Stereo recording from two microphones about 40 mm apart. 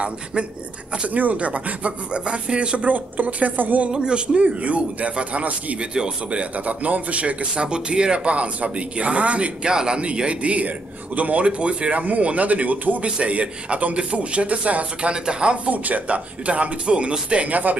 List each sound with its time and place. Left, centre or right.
1.1 s speech: right
2.9 s speech: right
3.9 s speech: right
6.5 s speech: right
11.4 s speech: right
15.7 s speech: right
17.5 s speech: right